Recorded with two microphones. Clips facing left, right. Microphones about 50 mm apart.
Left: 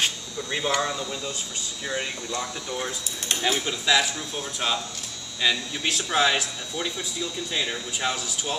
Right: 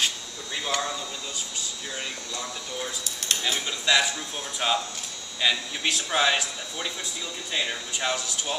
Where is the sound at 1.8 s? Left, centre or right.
Left.